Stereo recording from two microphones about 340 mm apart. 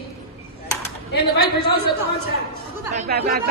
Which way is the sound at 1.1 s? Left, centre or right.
Left.